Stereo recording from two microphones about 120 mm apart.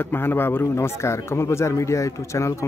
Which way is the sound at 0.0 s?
20° left (ahead or behind).